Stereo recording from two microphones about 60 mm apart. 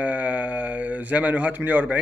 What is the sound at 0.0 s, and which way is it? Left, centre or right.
Speech, right.